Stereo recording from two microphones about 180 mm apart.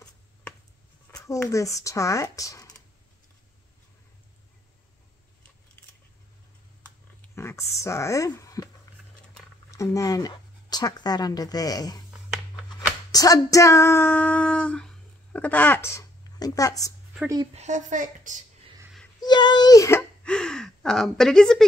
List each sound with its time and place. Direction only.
1.2 s speech: 15° left (ahead or behind)
5.8 s scissors: 5° left (ahead or behind)
7.3 s speech: 15° left (ahead or behind)
8.9 s a sound: 20° left (ahead or behind)
9.7 s speech: 15° left (ahead or behind)
13.1 s a sound: 20° left (ahead or behind)
17.6 s a woman's voice: 40° right (ahead or behind)
19.2 s a child's voice: 25° left (ahead or behind); by 21.6 s 5° left (ahead or behind)